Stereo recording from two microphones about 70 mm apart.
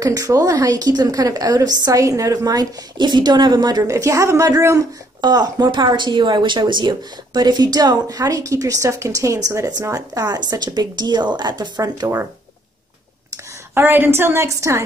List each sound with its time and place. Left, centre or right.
0.0 s a woman's voice: right
3.8 s a woman's voice: right
5.2 s speech: right
9.9 s a woman's voice: right
12.0 s a woman's voice: right
13.7 s a woman's voice: right